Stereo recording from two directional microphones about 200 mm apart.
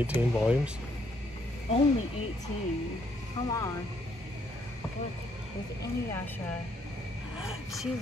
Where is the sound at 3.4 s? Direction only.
15° left (ahead or behind).